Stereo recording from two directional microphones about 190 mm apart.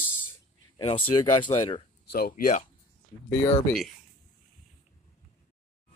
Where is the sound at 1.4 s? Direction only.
25° left (ahead or behind).